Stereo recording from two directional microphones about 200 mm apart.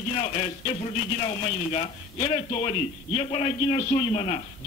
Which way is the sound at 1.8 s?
30° left (ahead or behind).